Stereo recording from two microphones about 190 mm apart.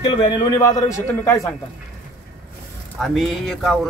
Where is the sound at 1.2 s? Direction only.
15° left (ahead or behind).